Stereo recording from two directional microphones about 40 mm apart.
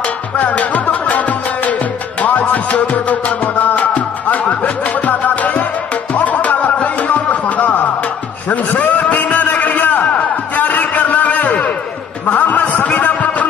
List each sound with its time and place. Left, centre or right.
0.4 s music: left
2.2 s music: left
8.5 s a sound: left